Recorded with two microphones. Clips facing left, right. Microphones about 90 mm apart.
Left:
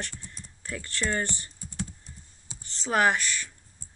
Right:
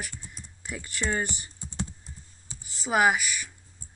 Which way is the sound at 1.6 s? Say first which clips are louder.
Right 2 dB; 30° right (ahead or behind).